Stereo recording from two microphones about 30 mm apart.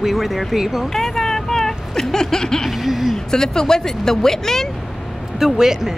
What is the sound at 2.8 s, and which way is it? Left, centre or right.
Speech, centre.